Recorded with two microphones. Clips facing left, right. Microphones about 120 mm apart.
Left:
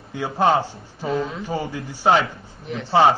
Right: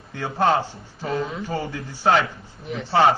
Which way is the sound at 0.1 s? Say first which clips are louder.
Left 2 dB; 15° left (ahead or behind).